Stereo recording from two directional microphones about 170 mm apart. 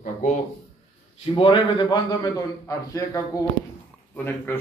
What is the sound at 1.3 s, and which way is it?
A man's voice, 30° left (ahead or behind).